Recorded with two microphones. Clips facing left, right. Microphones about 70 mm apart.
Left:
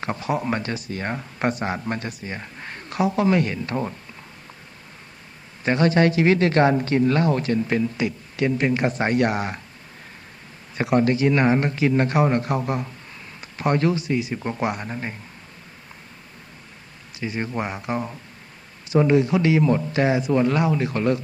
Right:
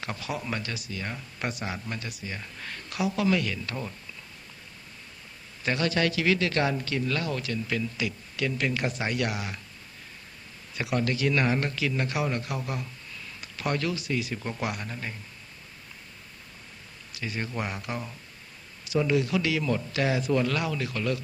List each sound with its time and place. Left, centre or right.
0.0 s speech: left
5.6 s speech: left
10.8 s a man's voice: left
17.2 s a man's voice: left